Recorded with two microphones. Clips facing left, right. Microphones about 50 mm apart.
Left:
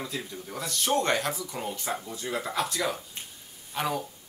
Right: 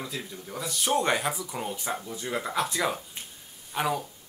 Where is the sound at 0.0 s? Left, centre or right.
Centre.